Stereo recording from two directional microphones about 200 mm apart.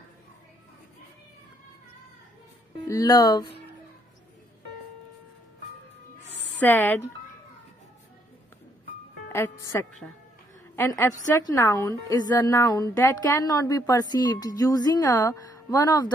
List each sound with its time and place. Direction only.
2.9 s speech: 20° left (ahead or behind)
6.6 s a woman's voice: 10° left (ahead or behind)
9.3 s a woman's voice: 15° left (ahead or behind)